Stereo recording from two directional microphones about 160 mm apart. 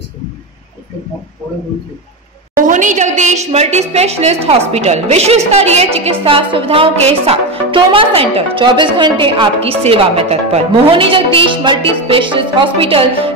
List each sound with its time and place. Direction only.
2.5 s a woman's voice: 55° right (ahead or behind); by 13.3 s 35° right (ahead or behind)